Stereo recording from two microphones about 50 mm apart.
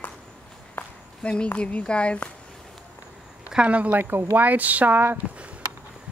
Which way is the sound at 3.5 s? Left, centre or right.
Right.